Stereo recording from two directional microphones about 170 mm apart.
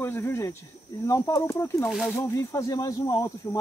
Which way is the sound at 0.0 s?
15° left (ahead or behind).